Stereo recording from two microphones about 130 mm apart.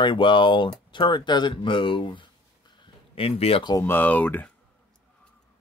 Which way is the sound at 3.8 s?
15° left (ahead or behind).